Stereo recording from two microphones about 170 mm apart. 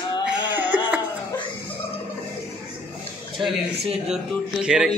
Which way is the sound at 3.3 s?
Centre (ahead or behind).